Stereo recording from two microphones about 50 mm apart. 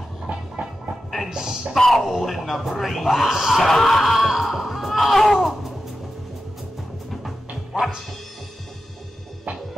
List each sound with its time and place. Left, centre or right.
0.6 s a sound: right
1.3 s speech: centre
1.8 s speech: centre
7.7 s speech: centre